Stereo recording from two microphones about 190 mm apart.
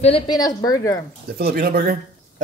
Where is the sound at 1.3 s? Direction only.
55° right (ahead or behind).